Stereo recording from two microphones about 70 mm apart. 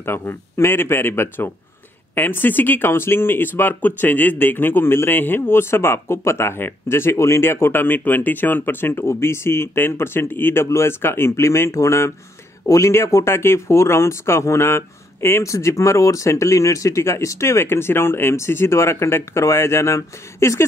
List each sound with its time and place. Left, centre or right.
0.0 s speech: left